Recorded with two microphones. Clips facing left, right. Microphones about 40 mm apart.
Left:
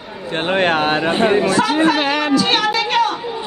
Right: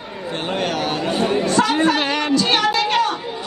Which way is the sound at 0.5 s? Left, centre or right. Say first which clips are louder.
Left 7 dB; left.